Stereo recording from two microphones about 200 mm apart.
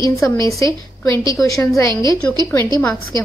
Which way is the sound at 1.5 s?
15° left (ahead or behind).